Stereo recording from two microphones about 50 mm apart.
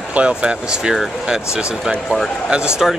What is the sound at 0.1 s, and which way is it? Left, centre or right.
Speech, right.